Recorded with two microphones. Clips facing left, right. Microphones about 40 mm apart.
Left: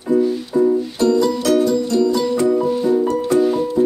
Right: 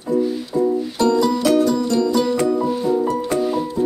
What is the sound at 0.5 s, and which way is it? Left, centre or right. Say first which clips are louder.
Music: left 3 dB; left.